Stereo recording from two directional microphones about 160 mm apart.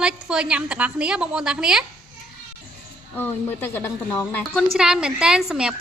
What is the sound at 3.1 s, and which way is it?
Speech, 15° left (ahead or behind).